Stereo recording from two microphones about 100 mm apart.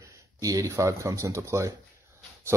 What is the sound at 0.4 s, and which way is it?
Speech, 35° right (ahead or behind).